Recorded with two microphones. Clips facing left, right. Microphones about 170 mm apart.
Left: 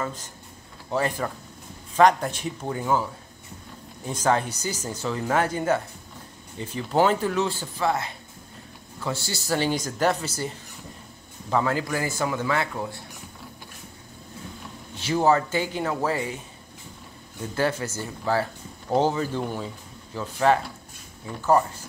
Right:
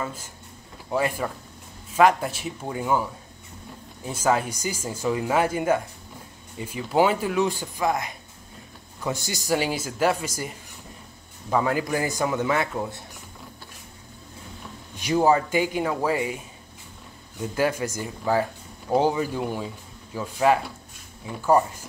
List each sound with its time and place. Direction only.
0.8 s speech: 10° right (ahead or behind)
4.1 s speech: 10° right (ahead or behind)
11.5 s speech: 15° right (ahead or behind)
15.0 s speech: 15° right (ahead or behind)
17.6 s speech: 10° right (ahead or behind)